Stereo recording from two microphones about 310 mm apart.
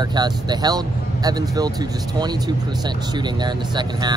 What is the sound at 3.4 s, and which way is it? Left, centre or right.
Speech, centre.